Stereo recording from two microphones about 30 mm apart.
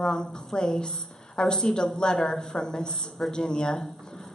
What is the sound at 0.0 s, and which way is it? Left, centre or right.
A woman's voice, left.